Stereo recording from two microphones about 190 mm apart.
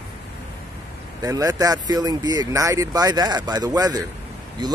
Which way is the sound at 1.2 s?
20° right (ahead or behind).